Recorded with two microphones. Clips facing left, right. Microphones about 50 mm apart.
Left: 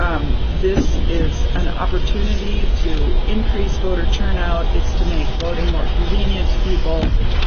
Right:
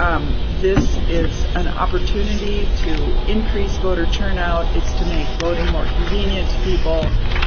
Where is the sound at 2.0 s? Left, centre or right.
Right.